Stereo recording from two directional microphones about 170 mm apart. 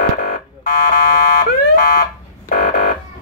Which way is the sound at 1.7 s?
60° left (ahead or behind).